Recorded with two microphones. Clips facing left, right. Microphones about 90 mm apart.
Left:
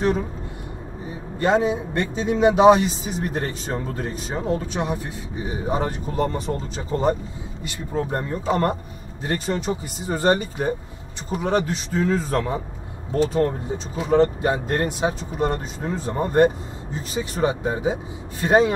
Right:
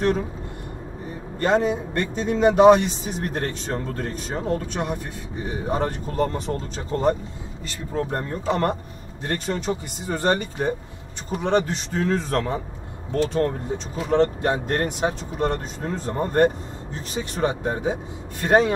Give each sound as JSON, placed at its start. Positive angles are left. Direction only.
{"t": 1.4, "sound": "speech", "side_deg": 5}